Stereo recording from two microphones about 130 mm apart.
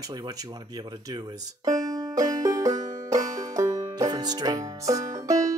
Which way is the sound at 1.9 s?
25° right (ahead or behind).